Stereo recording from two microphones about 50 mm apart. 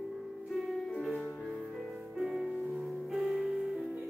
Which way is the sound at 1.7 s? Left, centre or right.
Centre.